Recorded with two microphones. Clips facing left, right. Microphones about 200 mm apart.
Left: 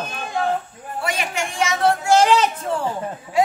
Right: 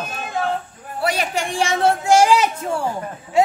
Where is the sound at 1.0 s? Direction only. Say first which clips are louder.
Right 4 dB; 35° right (ahead or behind).